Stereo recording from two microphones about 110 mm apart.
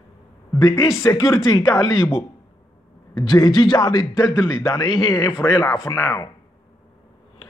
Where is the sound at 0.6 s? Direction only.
35° left (ahead or behind).